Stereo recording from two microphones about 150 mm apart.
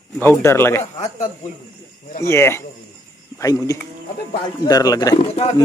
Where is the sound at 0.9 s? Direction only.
50° left (ahead or behind).